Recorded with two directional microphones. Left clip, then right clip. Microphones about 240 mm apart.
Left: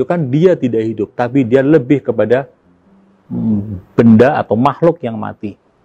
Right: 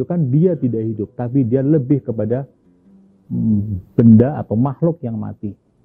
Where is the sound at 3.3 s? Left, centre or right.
Left.